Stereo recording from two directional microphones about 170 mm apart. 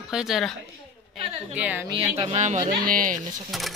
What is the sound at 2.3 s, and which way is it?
Speech, 45° right (ahead or behind).